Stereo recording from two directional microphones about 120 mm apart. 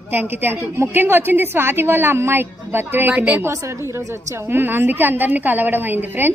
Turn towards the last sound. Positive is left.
turn(degrees=-15)  # may be behind; listen again after turning